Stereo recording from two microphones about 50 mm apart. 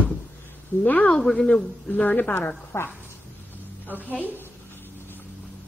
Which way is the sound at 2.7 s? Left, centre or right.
Left.